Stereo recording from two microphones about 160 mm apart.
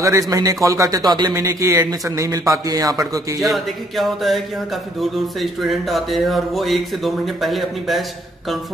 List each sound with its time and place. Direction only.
0.0 s speech: 20° right (ahead or behind)
3.3 s speech: centre (ahead or behind)
5.4 s speech: centre (ahead or behind)